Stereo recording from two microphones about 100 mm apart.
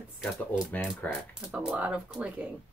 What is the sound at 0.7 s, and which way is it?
Speech, 15° left (ahead or behind).